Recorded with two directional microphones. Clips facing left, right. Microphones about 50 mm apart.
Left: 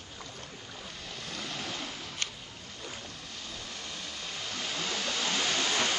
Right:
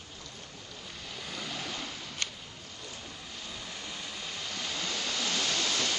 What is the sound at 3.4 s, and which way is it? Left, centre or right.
Waves, centre.